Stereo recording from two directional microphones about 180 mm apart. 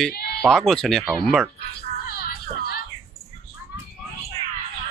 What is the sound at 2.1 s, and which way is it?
Music, 60° left (ahead or behind).